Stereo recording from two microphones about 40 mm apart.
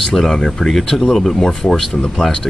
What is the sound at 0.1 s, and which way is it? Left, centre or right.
Speech, centre.